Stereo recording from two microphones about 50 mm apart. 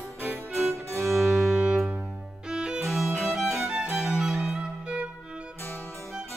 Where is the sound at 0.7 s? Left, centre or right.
Right.